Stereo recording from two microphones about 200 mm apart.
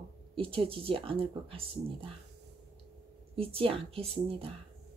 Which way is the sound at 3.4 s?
30° right (ahead or behind).